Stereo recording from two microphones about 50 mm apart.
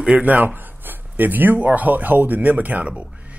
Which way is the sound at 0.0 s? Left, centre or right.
Right.